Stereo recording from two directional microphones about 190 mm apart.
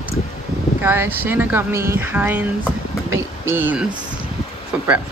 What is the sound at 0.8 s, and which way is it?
Speech, 10° right (ahead or behind).